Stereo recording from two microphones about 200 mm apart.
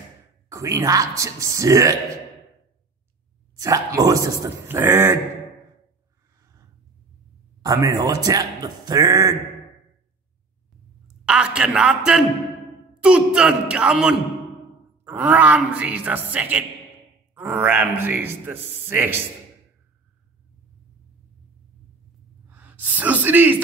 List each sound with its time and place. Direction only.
0.5 s a man's voice: 15° right (ahead or behind)
3.5 s a man's voice: 15° right (ahead or behind)
6.4 s a sound: 15° right (ahead or behind)
7.6 s a man's voice: 15° right (ahead or behind)
11.2 s a man's voice: 5° right (ahead or behind)
22.5 s speech: 10° right (ahead or behind)